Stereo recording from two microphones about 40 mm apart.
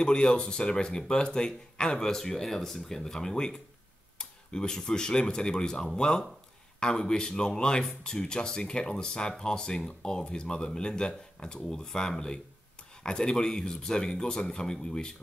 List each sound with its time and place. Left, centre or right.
0.0 s speech: left